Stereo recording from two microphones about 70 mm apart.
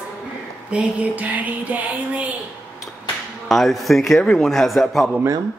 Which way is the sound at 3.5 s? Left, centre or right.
Centre.